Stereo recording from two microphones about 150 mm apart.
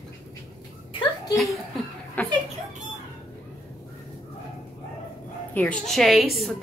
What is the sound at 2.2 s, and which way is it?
Speech, 10° left (ahead or behind).